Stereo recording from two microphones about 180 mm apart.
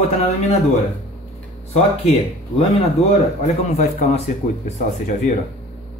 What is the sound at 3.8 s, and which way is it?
Speech, 40° left (ahead or behind).